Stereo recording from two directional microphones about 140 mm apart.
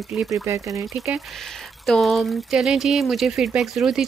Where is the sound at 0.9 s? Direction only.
Centre (ahead or behind).